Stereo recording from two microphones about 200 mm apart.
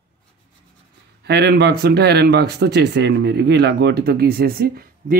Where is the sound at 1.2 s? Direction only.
55° right (ahead or behind).